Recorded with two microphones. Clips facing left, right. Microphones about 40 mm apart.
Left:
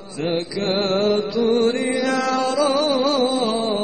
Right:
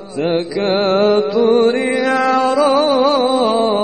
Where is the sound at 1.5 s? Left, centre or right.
Right.